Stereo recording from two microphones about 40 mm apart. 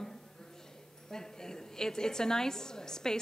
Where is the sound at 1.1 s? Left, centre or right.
Centre.